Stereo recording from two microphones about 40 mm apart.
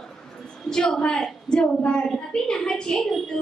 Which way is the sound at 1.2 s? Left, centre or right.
Centre.